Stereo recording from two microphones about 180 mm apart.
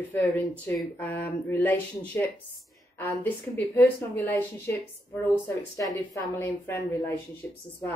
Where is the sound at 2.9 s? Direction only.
10° left (ahead or behind).